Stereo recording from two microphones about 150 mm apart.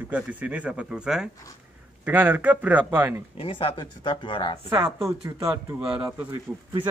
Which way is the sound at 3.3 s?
35° left (ahead or behind).